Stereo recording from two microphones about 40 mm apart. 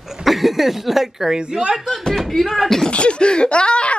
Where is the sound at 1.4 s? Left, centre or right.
Right.